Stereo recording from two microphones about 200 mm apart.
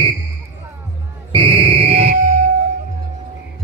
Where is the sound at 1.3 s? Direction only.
25° right (ahead or behind).